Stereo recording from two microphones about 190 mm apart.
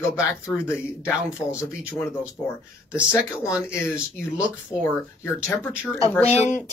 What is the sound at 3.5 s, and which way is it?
Speech, 5° right (ahead or behind).